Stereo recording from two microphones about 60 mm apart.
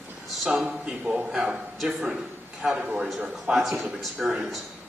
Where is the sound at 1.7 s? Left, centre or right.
Centre.